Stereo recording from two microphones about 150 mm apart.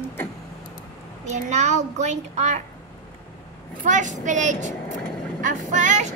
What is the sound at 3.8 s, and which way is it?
Speech, 55° right (ahead or behind).